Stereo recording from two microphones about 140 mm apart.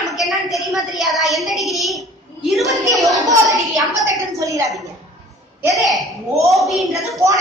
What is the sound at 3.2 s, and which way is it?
A woman's voice, 25° right (ahead or behind).